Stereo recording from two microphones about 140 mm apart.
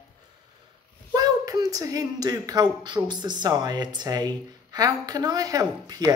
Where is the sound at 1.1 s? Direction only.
25° right (ahead or behind).